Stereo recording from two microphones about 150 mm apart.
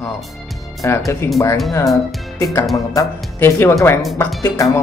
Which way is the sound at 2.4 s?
20° left (ahead or behind).